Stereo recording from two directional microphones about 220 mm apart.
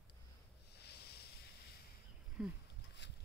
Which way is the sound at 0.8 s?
50° left (ahead or behind).